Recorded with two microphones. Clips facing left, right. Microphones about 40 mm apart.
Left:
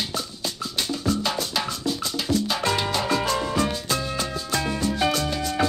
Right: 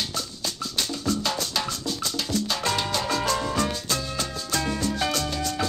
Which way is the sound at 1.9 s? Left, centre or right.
Centre.